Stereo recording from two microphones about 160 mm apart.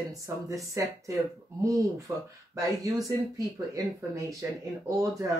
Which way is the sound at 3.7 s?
20° right (ahead or behind).